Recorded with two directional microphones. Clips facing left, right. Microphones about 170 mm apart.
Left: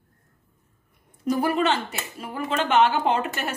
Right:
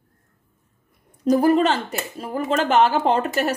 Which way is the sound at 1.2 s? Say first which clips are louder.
Right 6 dB; 35° right (ahead or behind).